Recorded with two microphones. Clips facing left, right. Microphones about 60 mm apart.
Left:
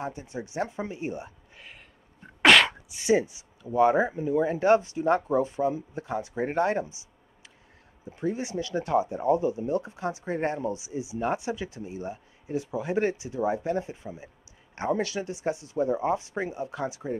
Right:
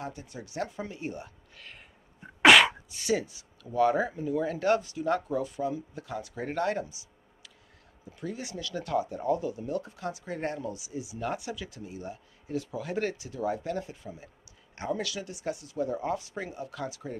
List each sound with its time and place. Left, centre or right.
0.0 s speech: left
2.4 s sneeze: centre
2.9 s speech: left